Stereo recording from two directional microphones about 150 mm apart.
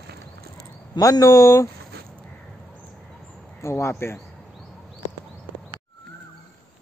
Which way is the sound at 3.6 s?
20° left (ahead or behind).